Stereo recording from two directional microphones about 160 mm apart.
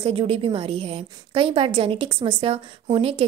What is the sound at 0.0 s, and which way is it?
A woman's voice, 35° right (ahead or behind).